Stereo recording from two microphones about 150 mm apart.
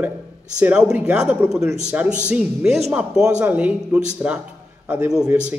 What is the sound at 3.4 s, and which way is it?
Speech, 10° right (ahead or behind).